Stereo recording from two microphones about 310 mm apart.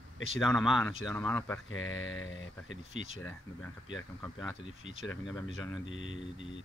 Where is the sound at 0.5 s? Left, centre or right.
Centre.